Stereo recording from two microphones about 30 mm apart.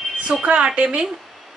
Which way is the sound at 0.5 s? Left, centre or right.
Right.